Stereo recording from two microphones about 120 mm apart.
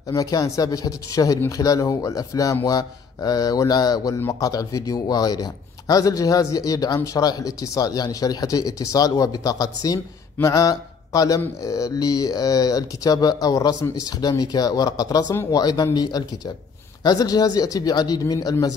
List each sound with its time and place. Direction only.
0.1 s a man's voice: 30° left (ahead or behind)
10.3 s mantra: 25° left (ahead or behind)
11.6 s a man's voice: 30° left (ahead or behind)